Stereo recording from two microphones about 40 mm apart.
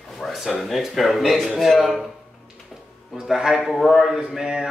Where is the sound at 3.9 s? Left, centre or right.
Centre.